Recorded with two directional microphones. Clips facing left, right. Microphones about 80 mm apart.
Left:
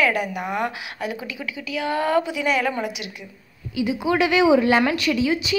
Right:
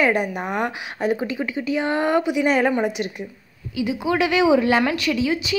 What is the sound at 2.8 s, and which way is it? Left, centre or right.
Speech, right.